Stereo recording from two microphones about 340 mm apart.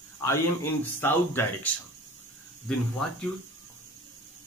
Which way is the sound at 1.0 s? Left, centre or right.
Centre.